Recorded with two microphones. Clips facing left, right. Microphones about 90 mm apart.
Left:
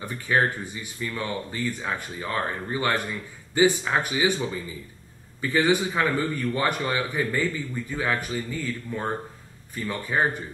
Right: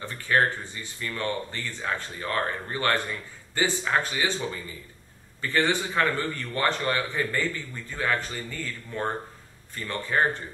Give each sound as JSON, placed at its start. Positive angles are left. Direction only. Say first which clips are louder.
{"t": 0.0, "sound": "a man's voice", "louder": "even", "side_deg": 15}
{"t": 5.4, "sound": "a man's voice", "louder": "left 3 dB", "side_deg": 15}